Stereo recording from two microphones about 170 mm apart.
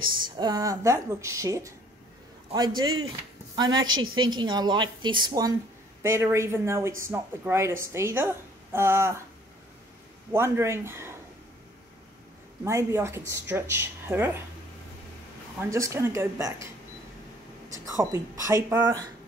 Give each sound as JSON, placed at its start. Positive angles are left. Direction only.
{"t": 0.4, "sound": "a woman's voice", "side_deg": -20}
{"t": 10.3, "sound": "speech", "side_deg": -15}
{"t": 12.6, "sound": "speech", "side_deg": -15}
{"t": 15.6, "sound": "speech", "side_deg": -15}
{"t": 17.8, "sound": "a woman's voice", "side_deg": -20}